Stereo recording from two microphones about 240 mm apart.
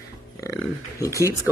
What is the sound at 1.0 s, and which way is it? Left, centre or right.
Speech, centre.